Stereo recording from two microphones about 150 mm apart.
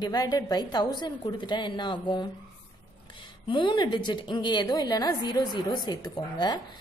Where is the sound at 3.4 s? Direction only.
35° left (ahead or behind).